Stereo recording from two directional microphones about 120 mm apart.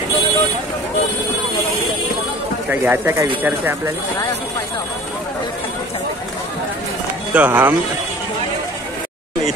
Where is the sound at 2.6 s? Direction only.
15° right (ahead or behind).